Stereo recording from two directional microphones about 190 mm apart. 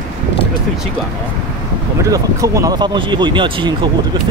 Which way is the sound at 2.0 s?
15° right (ahead or behind).